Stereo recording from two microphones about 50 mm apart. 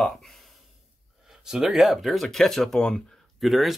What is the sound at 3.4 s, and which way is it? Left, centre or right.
Speech, centre.